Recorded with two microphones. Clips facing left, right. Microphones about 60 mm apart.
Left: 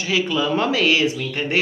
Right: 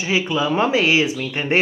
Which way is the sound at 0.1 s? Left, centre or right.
Centre.